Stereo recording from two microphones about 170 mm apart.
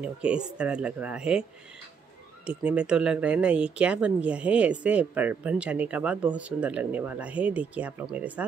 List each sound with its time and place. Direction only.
0.0 s speech: 5° right (ahead or behind)
2.4 s speech: 5° right (ahead or behind)